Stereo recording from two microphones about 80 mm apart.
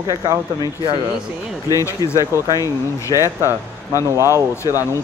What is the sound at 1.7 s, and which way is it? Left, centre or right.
Speech, left.